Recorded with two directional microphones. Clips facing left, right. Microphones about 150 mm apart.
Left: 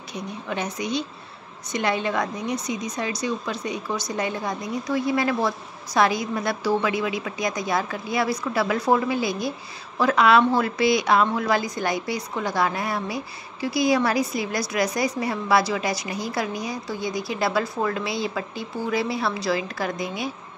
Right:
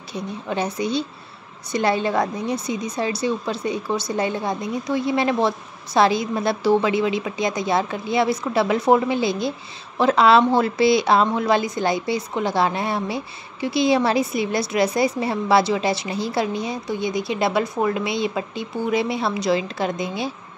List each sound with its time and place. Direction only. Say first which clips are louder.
0.1 s a woman's voice: right 4 dB; 30° right (ahead or behind)